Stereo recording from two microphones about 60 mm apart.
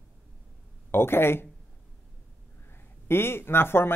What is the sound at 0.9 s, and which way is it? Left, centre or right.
Speech, left.